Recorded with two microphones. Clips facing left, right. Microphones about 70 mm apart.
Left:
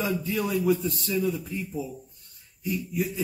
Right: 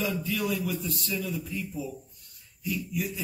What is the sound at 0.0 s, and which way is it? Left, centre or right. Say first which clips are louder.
A man's voice: left 2 dB; left.